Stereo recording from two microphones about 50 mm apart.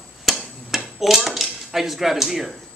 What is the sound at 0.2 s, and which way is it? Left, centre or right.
Dishes, centre.